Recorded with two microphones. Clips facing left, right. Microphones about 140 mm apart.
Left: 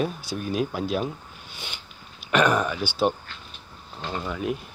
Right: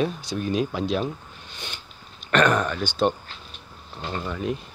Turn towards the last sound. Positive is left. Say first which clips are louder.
# even
turn(degrees=5)  # may be behind; listen again after turning